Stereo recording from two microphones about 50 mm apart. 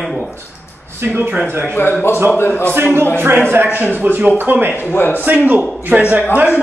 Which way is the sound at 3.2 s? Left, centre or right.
Right.